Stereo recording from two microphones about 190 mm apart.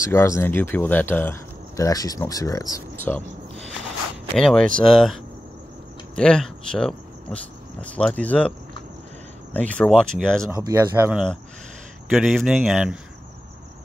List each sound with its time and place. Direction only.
0.0 s speech: 15° left (ahead or behind)
4.4 s speech: 5° left (ahead or behind)
10.5 s speech: 20° right (ahead or behind)
11.1 s speech: 5° right (ahead or behind)